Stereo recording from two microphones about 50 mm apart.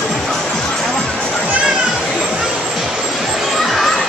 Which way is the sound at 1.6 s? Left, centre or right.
Centre.